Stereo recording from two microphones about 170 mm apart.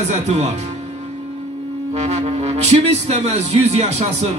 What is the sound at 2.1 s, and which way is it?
Speech, 40° right (ahead or behind).